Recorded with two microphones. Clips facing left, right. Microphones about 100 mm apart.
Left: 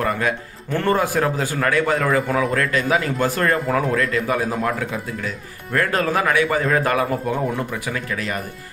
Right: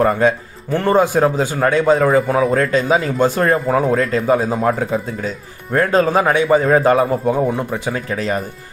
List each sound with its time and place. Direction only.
0.0 s speech: 30° right (ahead or behind)